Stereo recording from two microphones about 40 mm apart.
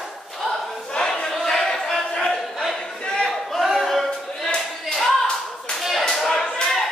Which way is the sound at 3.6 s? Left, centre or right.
Centre.